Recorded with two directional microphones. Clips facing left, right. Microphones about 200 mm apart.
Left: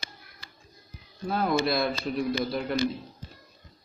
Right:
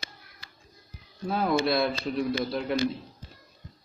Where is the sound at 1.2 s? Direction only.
Centre (ahead or behind).